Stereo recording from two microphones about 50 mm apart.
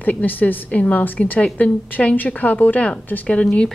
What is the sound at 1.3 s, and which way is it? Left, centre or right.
A woman's voice, left.